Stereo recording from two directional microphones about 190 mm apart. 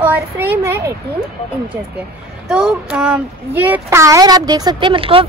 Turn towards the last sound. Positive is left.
turn(degrees=-30)  # may be behind; listen again after turning